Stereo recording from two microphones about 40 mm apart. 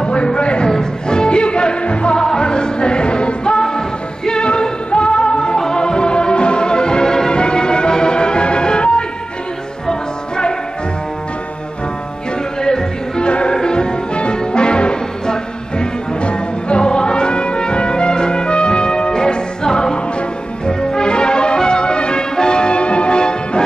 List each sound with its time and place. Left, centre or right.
0.0 s a sound: left
0.7 s music: centre
2.1 s music: centre
12.6 s music: centre